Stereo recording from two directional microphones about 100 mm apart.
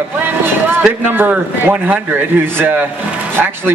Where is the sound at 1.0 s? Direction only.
20° right (ahead or behind).